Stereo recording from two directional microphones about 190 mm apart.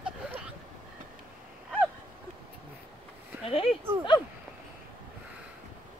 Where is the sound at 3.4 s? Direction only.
30° left (ahead or behind).